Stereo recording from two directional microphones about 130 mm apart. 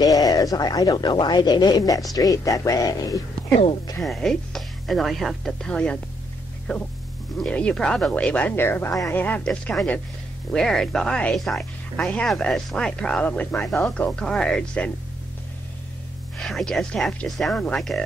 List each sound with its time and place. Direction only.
0.0 s speech: 30° left (ahead or behind)
4.0 s speech: centre (ahead or behind)
16.3 s speech: centre (ahead or behind)